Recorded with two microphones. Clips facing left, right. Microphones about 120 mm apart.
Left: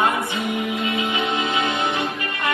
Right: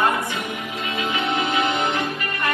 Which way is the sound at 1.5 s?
20° left (ahead or behind).